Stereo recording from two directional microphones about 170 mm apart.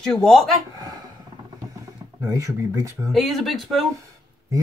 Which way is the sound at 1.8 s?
20° right (ahead or behind).